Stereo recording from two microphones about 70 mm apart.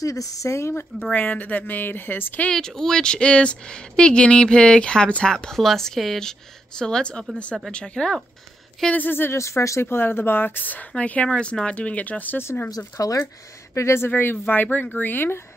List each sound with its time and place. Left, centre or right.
0.0 s speech: left
1.1 s speech: left
2.5 s speech: centre
8.9 s speech: left
9.4 s speech: left
12.6 s speech: left
13.7 s speech: left